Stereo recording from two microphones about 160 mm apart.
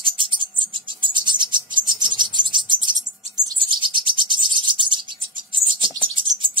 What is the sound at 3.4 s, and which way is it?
Bird, 30° right (ahead or behind).